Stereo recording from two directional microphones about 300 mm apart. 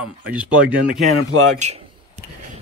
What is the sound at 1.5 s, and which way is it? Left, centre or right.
Speech, right.